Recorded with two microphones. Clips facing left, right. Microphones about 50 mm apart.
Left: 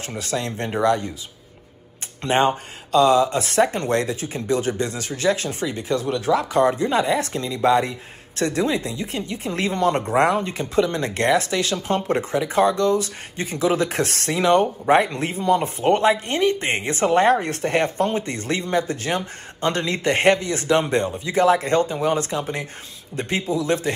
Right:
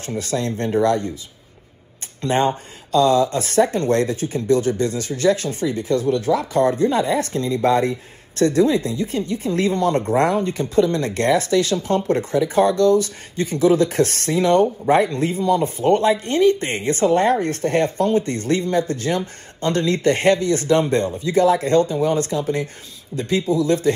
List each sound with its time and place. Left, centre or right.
0.0 s speech: left
2.2 s speech: left